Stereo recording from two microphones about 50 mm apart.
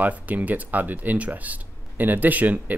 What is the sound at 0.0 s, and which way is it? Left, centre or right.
Speech, right.